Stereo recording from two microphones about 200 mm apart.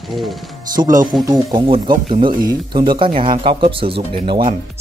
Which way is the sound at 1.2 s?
20° right (ahead or behind).